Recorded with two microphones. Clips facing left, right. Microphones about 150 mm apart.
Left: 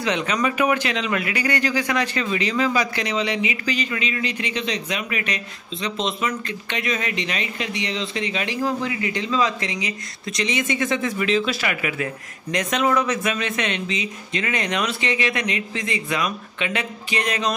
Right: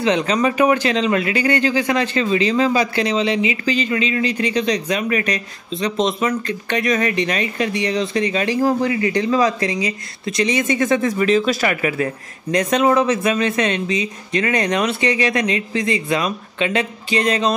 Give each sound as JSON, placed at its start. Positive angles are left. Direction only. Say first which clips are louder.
{"t": 0.0, "sound": "speech", "louder": "right 5 dB", "side_deg": -30}